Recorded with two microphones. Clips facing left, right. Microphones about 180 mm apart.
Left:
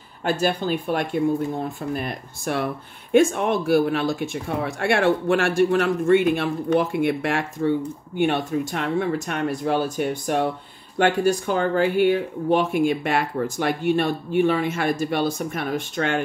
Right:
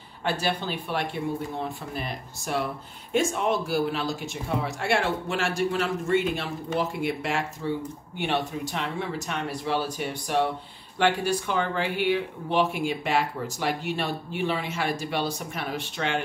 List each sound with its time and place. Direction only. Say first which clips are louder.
0.2 s speech: left 5 dB; 45° left (ahead or behind)